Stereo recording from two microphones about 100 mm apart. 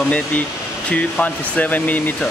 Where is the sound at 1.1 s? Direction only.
15° left (ahead or behind).